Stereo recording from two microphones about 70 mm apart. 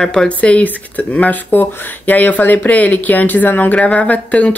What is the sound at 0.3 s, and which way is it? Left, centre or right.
Speech, centre.